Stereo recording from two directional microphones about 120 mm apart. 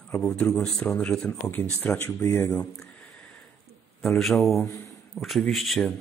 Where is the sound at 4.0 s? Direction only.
Centre (ahead or behind).